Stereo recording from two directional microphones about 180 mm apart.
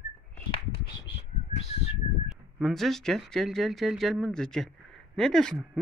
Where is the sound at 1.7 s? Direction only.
35° left (ahead or behind).